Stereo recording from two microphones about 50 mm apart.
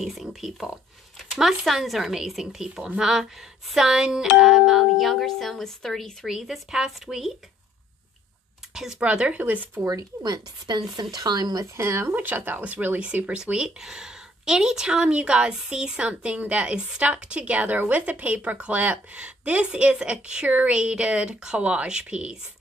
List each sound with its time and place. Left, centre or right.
0.0 s speech: centre
6.2 s speech: centre
9.0 s speech: right
11.7 s speech: right
12.3 s speech: right
20.4 s speech: right
20.7 s speech: right